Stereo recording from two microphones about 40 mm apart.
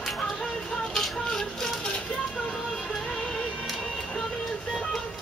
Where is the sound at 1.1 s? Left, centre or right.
Centre.